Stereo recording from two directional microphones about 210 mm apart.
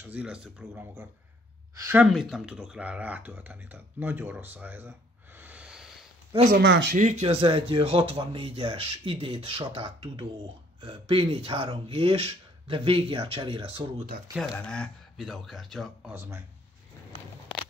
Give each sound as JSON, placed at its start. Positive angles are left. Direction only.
{"t": 0.0, "sound": "speech", "side_deg": -5}
{"t": 2.0, "sound": "speech", "side_deg": 0}
{"t": 6.5, "sound": "speech", "side_deg": -55}
{"t": 7.0, "sound": "speech", "side_deg": -35}
{"t": 14.5, "sound": "speech", "side_deg": 5}